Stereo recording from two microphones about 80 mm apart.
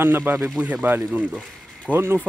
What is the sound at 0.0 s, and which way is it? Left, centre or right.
Speech, right.